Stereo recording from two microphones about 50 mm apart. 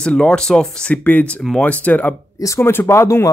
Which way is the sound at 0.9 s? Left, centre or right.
Left.